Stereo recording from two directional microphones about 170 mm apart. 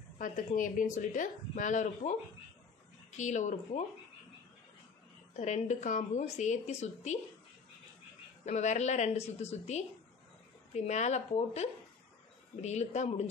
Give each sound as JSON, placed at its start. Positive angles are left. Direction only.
{"t": 0.2, "sound": "speech", "side_deg": 50}
{"t": 5.3, "sound": "speech", "side_deg": 45}
{"t": 8.5, "sound": "a woman's voice", "side_deg": 40}